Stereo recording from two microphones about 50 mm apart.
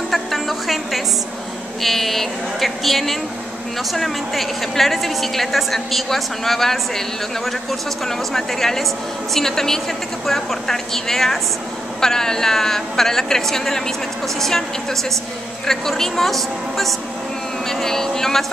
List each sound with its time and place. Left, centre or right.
0.1 s music: centre
1.8 s a woman's voice: centre
8.3 s a woman's voice: centre